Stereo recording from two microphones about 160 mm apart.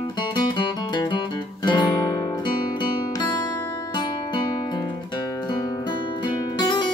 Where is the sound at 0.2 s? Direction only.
30° left (ahead or behind).